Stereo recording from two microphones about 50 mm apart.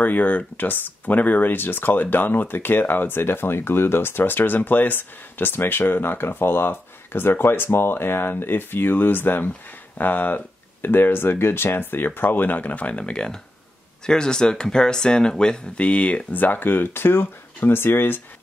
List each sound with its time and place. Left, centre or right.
0.0 s speech: left